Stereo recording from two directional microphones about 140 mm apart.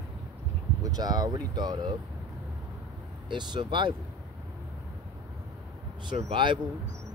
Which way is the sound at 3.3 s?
35° right (ahead or behind).